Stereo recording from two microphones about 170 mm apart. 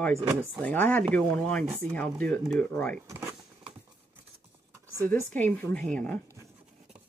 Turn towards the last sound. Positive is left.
turn(degrees=5)  # may be behind; listen again after turning